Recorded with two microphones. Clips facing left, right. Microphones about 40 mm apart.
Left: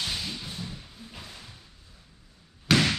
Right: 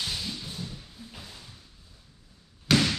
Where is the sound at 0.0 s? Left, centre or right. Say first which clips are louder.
Left 1 dB; centre.